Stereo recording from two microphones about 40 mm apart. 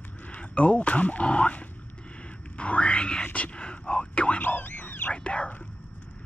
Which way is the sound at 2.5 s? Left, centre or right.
Left.